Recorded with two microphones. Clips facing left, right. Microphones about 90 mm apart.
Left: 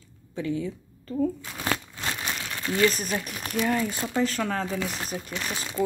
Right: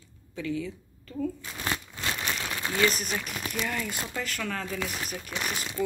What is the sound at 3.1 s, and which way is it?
Speech, 45° left (ahead or behind).